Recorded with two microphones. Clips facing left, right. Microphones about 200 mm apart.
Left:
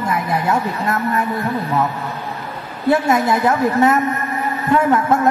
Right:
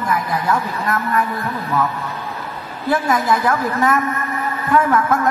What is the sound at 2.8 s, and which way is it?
A man's voice, 25° left (ahead or behind).